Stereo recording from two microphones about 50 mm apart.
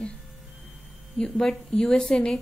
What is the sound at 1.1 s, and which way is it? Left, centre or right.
A woman's voice, centre.